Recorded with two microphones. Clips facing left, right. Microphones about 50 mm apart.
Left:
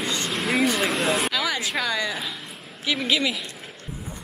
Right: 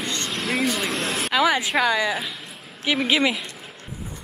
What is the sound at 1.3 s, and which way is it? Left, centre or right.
Speech, centre.